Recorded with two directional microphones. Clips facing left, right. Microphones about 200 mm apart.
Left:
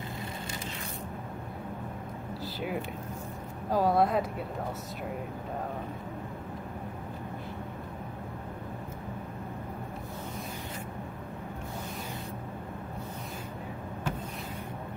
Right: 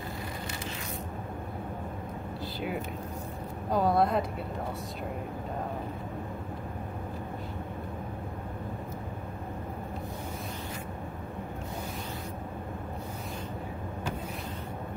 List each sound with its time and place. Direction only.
3.7 s speech: centre (ahead or behind)